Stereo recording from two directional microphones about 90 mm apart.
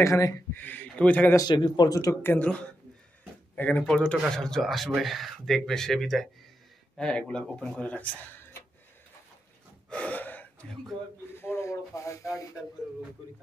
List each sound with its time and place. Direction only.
0.0 s speech: 35° left (ahead or behind)
0.5 s speech: 20° left (ahead or behind)
1.5 s speech: 60° left (ahead or behind)
1.9 s speech: 40° left (ahead or behind)
2.2 s speech: 15° left (ahead or behind)
9.8 s gasp: 15° left (ahead or behind)
11.3 s a sound: 30° left (ahead or behind)